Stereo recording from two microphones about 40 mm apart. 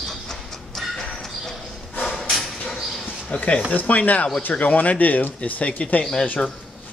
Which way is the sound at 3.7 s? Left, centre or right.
Left.